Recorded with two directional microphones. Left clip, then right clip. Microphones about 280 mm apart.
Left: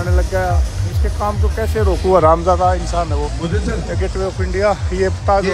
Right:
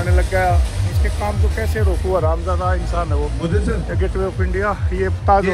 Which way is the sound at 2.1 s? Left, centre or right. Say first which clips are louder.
Left 9 dB; left.